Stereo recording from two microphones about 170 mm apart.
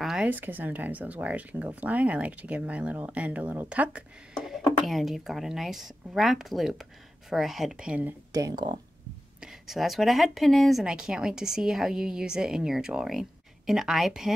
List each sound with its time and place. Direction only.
0.0 s speech: 5° right (ahead or behind)
8.3 s speech: 20° right (ahead or behind)
9.4 s a woman's voice: centre (ahead or behind)